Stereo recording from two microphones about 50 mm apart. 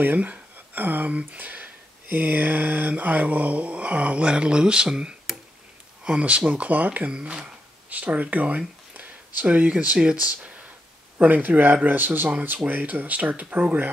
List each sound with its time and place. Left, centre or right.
0.0 s speech: right; by 5.4 s centre
6.0 s speech: right
7.1 s speech: centre
7.9 s speech: right